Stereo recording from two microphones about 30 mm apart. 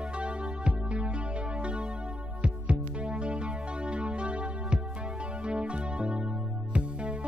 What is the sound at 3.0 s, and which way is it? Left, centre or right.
Music, right.